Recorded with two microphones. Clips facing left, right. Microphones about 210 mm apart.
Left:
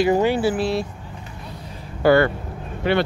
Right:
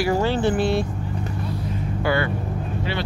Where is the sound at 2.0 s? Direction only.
40° left (ahead or behind).